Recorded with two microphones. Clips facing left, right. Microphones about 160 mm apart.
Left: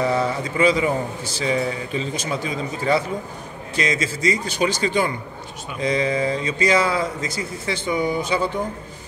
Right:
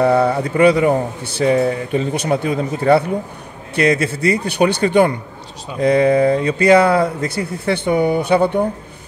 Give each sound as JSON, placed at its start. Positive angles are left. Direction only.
{"t": 0.0, "sound": "speech", "side_deg": -60}